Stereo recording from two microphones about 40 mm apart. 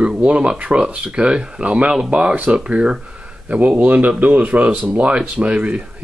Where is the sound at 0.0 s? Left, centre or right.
Right.